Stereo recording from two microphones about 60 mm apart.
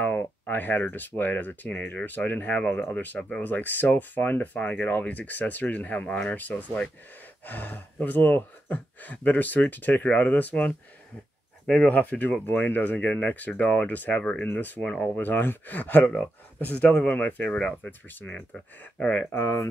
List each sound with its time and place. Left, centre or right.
0.2 s speech: left
3.2 s speech: centre
3.4 s speech: left
17.5 s speech: centre